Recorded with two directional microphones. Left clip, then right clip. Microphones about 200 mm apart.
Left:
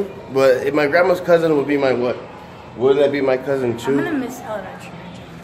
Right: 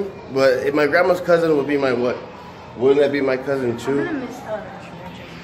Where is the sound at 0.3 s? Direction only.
15° left (ahead or behind).